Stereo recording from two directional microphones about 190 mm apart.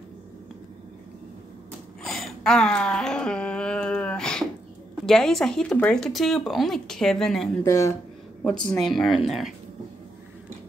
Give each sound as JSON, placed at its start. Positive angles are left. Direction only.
{"t": 2.0, "sound": "a sound", "side_deg": 0}
{"t": 5.0, "sound": "speech", "side_deg": 0}
{"t": 7.6, "sound": "speech", "side_deg": 15}
{"t": 8.5, "sound": "speech", "side_deg": 5}